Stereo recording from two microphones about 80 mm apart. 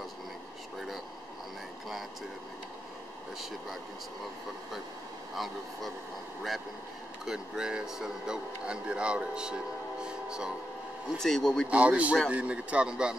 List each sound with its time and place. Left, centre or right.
5.3 s speech: centre
7.2 s speech: centre
10.0 s music: centre
11.1 s speech: centre
11.7 s speech: centre